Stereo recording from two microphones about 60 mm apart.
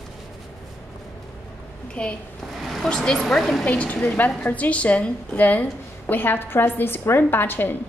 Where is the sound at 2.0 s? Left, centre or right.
Centre.